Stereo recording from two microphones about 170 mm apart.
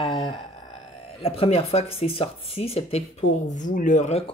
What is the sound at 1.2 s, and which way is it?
Speech, 35° left (ahead or behind).